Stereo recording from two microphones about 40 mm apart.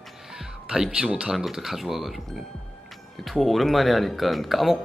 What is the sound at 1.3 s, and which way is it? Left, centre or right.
Speech, centre.